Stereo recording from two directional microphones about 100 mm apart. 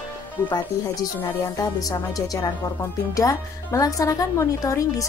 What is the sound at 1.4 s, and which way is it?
Speech, 35° left (ahead or behind).